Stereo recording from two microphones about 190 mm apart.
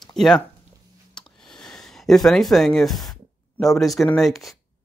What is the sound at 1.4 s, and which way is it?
Speech, 5° left (ahead or behind).